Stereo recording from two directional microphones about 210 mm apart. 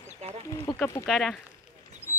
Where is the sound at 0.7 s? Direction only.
10° left (ahead or behind).